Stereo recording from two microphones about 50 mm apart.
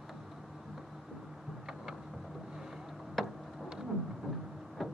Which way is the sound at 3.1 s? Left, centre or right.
Centre.